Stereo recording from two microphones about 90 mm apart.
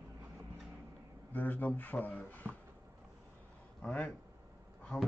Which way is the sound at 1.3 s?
20° left (ahead or behind).